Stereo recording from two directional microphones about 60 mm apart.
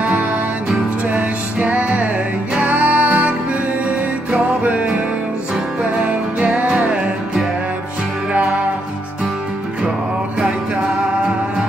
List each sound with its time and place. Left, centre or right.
0.0 s music: right
4.6 s music: right
6.5 s music: centre